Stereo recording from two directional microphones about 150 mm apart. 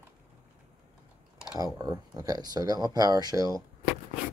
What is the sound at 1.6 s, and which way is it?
Speech, 25° right (ahead or behind).